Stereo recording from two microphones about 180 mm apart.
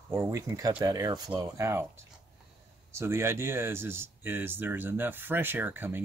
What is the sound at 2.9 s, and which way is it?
Speech, 15° right (ahead or behind).